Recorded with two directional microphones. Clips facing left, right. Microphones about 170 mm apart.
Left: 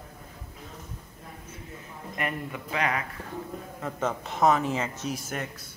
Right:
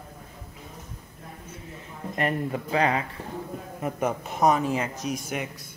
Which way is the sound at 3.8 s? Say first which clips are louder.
Right 3 dB; 15° right (ahead or behind).